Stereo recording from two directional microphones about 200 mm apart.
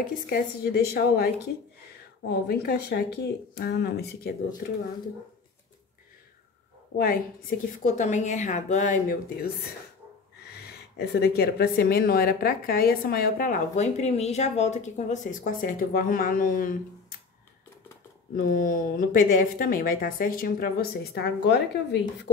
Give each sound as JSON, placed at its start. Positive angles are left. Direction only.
{"t": 0.3, "sound": "speech", "side_deg": 50}
{"t": 7.0, "sound": "a woman's voice", "side_deg": 45}
{"t": 10.5, "sound": "speech", "side_deg": 55}
{"t": 18.3, "sound": "speech", "side_deg": 45}